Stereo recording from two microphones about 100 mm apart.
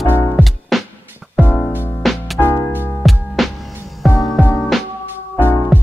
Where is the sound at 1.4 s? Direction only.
20° left (ahead or behind).